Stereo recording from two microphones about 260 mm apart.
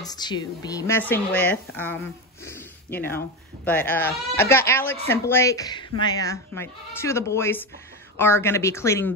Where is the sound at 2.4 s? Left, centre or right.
Centre.